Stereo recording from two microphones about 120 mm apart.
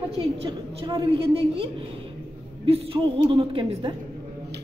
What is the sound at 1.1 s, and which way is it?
Speech, 50° right (ahead or behind).